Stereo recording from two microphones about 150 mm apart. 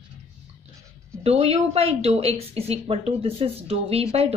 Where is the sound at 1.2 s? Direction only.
40° right (ahead or behind).